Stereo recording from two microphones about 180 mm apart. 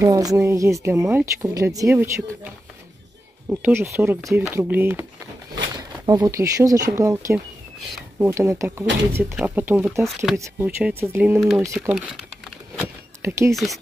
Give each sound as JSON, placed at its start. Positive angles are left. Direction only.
{"t": 0.0, "sound": "a woman's voice", "side_deg": -20}
{"t": 3.4, "sound": "a woman's voice", "side_deg": -10}
{"t": 6.0, "sound": "a woman's voice", "side_deg": -20}
{"t": 12.7, "sound": "a sound", "side_deg": -15}
{"t": 13.5, "sound": "speech", "side_deg": 0}